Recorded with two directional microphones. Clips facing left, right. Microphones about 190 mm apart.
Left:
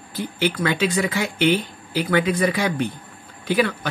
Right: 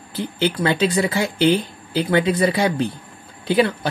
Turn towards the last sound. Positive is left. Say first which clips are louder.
# right 3 dB
turn(degrees=-30)  # may be behind; listen again after turning